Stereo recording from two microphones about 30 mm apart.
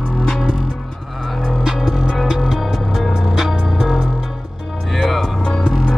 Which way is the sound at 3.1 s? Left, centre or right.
Centre.